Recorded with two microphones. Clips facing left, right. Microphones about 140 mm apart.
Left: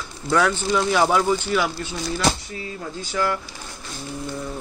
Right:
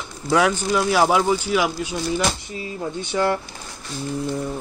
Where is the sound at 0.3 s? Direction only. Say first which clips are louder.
Right 1 dB; 10° right (ahead or behind); by 3.3 s 25° right (ahead or behind).